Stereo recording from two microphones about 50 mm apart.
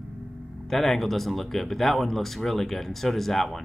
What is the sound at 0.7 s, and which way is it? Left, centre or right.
Speech, centre.